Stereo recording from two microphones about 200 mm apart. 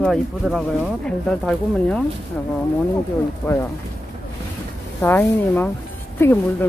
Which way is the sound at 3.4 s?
10° left (ahead or behind).